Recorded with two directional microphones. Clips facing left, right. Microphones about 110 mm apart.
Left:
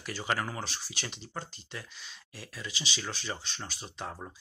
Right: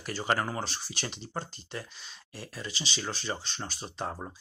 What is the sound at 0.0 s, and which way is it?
Speech, 45° right (ahead or behind).